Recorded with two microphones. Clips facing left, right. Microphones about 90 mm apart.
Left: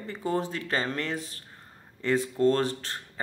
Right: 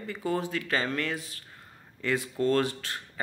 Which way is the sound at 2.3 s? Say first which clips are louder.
Even; 30° left (ahead or behind).